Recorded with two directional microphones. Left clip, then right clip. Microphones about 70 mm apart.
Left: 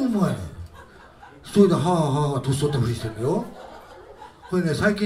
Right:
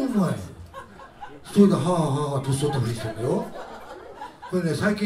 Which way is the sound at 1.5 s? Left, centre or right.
Left.